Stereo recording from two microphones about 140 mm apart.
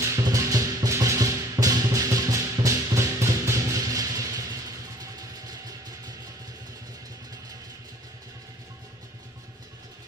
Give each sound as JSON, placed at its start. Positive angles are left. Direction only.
{"t": 0.0, "sound": "music", "side_deg": -20}